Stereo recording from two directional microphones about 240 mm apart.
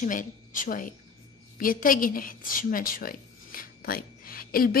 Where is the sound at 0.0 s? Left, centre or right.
Left.